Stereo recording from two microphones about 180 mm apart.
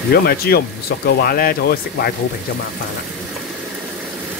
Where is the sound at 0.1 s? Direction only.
60° left (ahead or behind).